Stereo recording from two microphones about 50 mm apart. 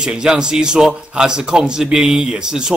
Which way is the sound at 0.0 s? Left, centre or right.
Centre.